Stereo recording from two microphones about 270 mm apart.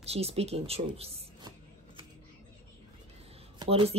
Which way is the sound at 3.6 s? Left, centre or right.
Right.